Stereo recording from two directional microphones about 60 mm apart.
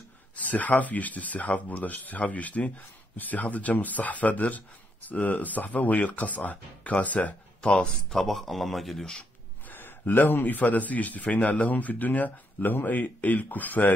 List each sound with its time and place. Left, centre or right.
0.4 s speech: left
8.1 s speech: centre
9.7 s speech: left